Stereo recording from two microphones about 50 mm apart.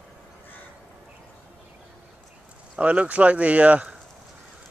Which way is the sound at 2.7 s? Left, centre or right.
Right.